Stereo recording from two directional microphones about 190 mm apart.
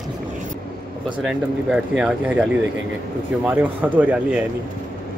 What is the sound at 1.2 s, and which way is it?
Speech, 5° right (ahead or behind).